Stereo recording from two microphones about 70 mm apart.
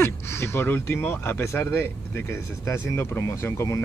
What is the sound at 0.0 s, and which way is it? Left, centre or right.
Speech, left.